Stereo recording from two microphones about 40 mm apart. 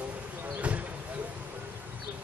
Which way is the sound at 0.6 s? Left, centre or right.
Right.